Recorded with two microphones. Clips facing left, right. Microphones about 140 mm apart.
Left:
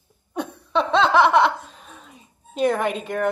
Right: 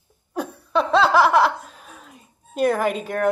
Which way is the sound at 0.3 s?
5° right (ahead or behind).